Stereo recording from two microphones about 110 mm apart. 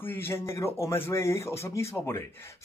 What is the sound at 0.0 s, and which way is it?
Speech, 20° left (ahead or behind).